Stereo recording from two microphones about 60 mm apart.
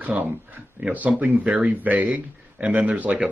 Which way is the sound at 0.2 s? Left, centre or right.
Right.